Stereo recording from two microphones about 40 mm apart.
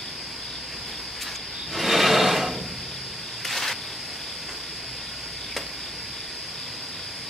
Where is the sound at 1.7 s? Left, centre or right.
Centre.